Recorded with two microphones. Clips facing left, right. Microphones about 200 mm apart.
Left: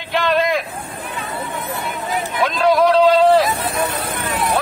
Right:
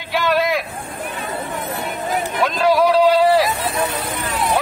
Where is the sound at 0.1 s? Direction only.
5° right (ahead or behind).